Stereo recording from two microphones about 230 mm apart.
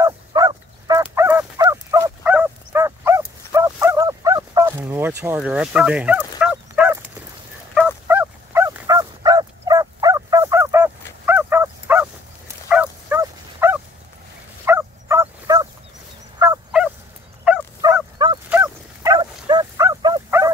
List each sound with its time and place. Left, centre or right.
0.0 s dog: centre
12.6 s bow-wow: centre
14.7 s fowl: centre
18.5 s dog: centre
19.1 s dog: centre